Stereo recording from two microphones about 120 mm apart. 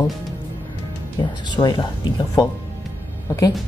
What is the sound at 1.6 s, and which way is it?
Speech, 35° left (ahead or behind).